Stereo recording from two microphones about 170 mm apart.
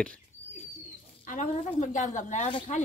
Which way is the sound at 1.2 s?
50° left (ahead or behind).